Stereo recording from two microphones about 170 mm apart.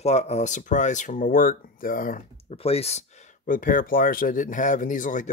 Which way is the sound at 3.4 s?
55° left (ahead or behind).